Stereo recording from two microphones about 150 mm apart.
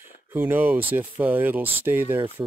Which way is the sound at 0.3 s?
10° right (ahead or behind).